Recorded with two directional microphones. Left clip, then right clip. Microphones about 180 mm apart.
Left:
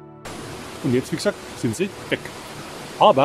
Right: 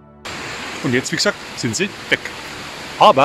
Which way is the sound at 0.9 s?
5° left (ahead or behind).